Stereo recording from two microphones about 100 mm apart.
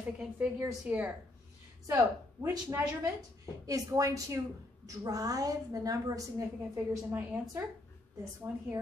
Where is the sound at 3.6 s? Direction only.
35° right (ahead or behind).